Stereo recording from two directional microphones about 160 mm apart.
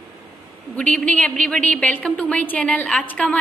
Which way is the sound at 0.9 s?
10° left (ahead or behind).